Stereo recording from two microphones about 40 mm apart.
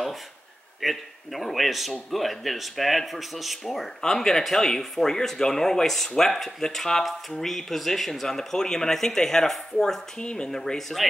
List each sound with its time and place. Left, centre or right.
0.7 s speech: centre
4.0 s speech: centre
10.2 s speech: left
10.5 s speech: centre